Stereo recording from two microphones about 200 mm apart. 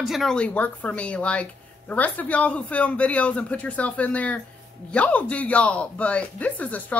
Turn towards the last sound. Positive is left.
turn(degrees=10)  # may be behind; listen again after turning